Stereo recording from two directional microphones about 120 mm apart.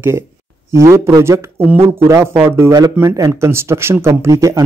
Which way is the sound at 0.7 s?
25° right (ahead or behind).